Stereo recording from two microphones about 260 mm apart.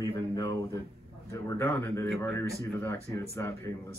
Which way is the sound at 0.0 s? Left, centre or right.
Centre.